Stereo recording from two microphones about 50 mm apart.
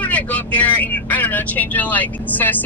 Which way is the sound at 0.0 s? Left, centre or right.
Left.